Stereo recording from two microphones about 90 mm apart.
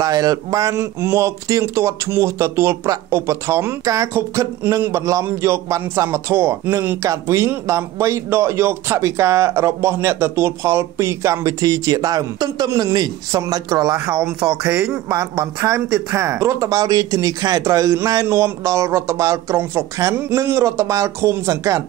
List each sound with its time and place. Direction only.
0.0 s a man's voice: 40° right (ahead or behind); by 7.0 s 25° right (ahead or behind)
7.0 s speech: 35° right (ahead or behind); by 13.4 s 50° right (ahead or behind)
13.4 s speech: 40° right (ahead or behind)
14.6 s speech: 15° right (ahead or behind)
15.0 s speech: 40° right (ahead or behind)